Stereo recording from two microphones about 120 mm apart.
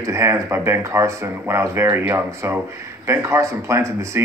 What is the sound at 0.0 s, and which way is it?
Speech, 25° right (ahead or behind).